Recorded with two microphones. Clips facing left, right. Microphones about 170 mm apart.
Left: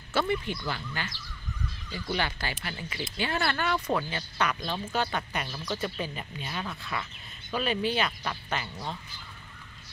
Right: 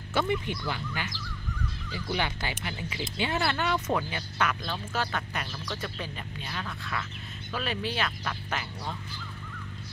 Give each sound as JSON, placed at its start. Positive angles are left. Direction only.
{"t": 0.1, "sound": "speech", "side_deg": -15}